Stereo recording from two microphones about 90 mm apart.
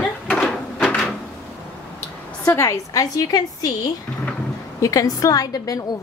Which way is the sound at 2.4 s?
35° left (ahead or behind).